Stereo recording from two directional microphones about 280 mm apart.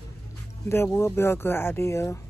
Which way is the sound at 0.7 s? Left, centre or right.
Centre.